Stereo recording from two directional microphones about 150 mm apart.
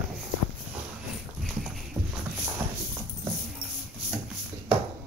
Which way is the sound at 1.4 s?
Centre (ahead or behind).